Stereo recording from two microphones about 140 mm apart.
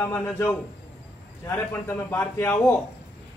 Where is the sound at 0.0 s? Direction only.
20° left (ahead or behind).